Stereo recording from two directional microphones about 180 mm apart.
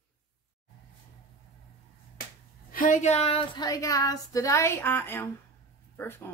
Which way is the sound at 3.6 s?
20° left (ahead or behind).